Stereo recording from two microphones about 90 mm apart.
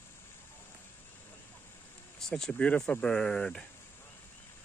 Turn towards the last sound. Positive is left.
turn(degrees=10)  # may be behind; listen again after turning